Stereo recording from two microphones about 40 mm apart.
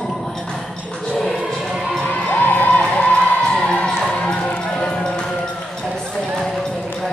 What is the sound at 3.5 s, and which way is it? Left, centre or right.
Music, centre.